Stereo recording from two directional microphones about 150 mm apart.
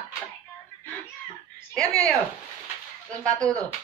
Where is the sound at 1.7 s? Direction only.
5° left (ahead or behind).